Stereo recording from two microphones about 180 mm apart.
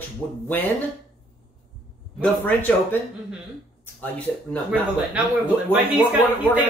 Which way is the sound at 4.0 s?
10° left (ahead or behind).